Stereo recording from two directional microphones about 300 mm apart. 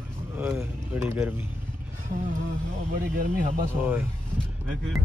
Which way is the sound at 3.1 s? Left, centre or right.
Right.